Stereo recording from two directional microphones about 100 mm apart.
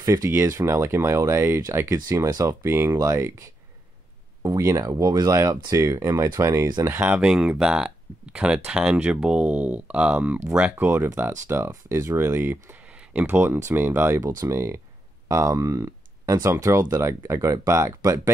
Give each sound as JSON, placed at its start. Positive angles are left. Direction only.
{"t": 0.0, "sound": "speech", "side_deg": -35}
{"t": 7.2, "sound": "speech", "side_deg": -10}